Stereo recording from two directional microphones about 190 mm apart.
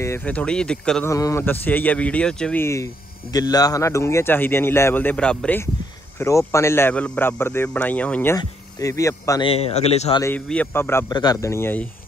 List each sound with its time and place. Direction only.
0.0 s speech: 10° left (ahead or behind)
1.1 s speech: 15° left (ahead or behind)
9.5 s a man's voice: 30° left (ahead or behind)
10.2 s speech: 10° left (ahead or behind)